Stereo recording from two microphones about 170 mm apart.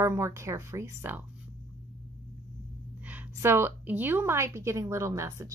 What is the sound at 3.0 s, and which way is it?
A woman's voice, 10° right (ahead or behind).